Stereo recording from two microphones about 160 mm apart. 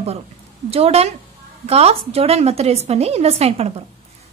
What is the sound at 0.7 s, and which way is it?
A woman's voice, 40° right (ahead or behind).